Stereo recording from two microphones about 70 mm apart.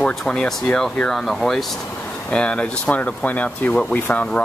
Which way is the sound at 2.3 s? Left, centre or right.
Centre.